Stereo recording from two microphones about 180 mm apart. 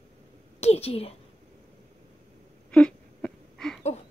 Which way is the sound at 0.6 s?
35° left (ahead or behind).